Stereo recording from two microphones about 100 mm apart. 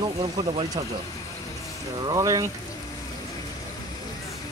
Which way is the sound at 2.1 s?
35° right (ahead or behind).